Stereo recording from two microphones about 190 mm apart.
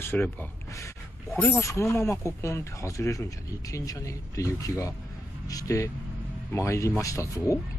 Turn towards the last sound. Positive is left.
turn(degrees=15)  # may be behind; listen again after turning